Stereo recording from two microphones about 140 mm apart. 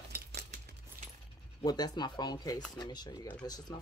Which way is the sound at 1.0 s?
90° right.